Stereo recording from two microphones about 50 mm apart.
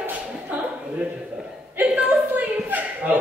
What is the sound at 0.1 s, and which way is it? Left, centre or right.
Chuckle, right.